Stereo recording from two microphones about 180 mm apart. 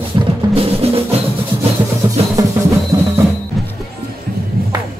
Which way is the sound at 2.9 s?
15° right (ahead or behind).